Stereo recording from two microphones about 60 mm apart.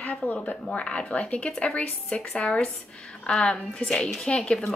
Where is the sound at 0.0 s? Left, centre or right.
Left.